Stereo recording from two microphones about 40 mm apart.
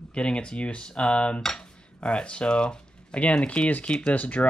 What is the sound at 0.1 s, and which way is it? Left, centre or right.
Speech, left.